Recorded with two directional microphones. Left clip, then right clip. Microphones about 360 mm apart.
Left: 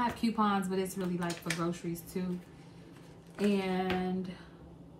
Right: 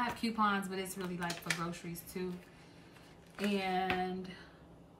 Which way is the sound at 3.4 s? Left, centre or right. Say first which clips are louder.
Left 2 dB; centre.